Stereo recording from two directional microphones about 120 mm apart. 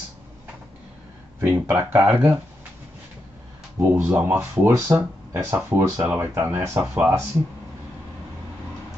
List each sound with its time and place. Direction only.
1.4 s speech: 20° right (ahead or behind)
3.8 s speech: 20° right (ahead or behind)